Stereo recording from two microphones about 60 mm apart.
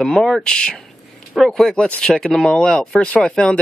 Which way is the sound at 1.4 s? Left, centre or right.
Centre.